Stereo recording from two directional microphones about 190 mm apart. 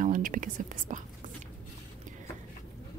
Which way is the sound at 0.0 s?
45° right (ahead or behind).